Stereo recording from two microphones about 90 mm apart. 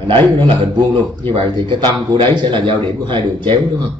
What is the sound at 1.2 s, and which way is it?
A man's voice, 60° right (ahead or behind).